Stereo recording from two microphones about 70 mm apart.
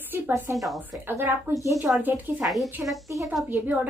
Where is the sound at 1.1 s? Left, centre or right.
Right.